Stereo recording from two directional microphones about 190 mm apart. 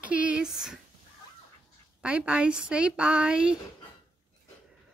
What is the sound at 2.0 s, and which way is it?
Speech, 5° right (ahead or behind).